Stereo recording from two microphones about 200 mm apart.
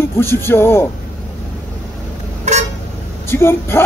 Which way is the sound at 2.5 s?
35° right (ahead or behind).